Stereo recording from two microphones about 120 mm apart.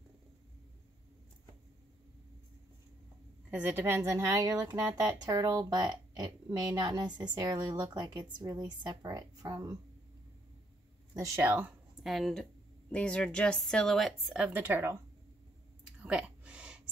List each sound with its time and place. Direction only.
3.4 s a woman's voice: 15° right (ahead or behind); by 9.8 s 30° right (ahead or behind)
11.1 s a woman's voice: 25° right (ahead or behind)
12.0 s a woman's voice: centre (ahead or behind); by 15.0 s 20° right (ahead or behind)
15.8 s a sound: 10° right (ahead or behind)